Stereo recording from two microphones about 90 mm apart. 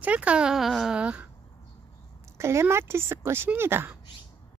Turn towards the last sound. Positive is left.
turn(degrees=-25)  # may be behind; listen again after turning